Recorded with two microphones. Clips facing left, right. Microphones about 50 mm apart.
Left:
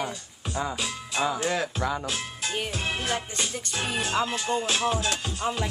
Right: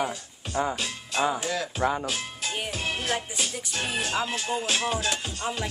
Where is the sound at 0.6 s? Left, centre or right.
Centre.